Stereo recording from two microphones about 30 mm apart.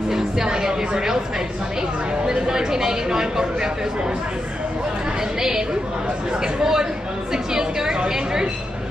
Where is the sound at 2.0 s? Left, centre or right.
Right.